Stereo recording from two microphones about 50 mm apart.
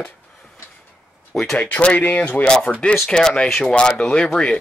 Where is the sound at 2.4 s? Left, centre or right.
Left.